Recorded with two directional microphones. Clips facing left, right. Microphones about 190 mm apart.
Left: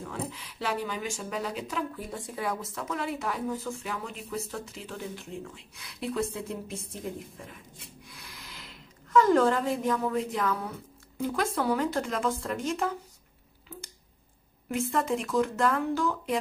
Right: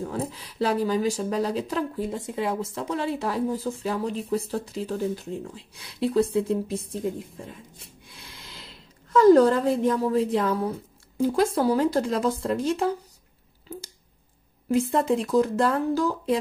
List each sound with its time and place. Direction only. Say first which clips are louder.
0.0 s speech: right 6 dB; 35° right (ahead or behind)
14.7 s speech: right 6 dB; 35° right (ahead or behind)